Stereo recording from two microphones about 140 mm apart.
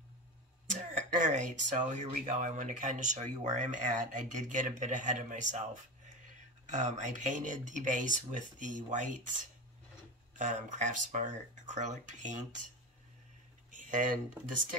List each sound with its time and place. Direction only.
0.7 s a sound: 65° right (ahead or behind)
2.2 s speech: 60° right (ahead or behind)
6.6 s speech: 60° right (ahead or behind)
13.7 s speech: 70° right (ahead or behind)